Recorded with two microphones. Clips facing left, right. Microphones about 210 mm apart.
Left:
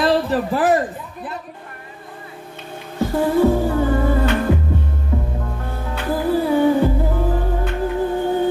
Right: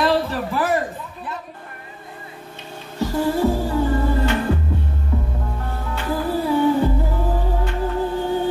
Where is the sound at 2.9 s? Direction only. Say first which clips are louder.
Left 3 dB; 55° left (ahead or behind).